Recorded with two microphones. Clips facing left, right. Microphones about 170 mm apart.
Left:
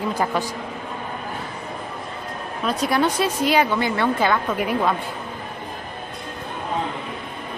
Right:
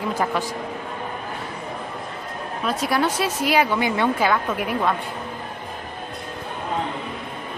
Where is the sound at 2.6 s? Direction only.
5° right (ahead or behind).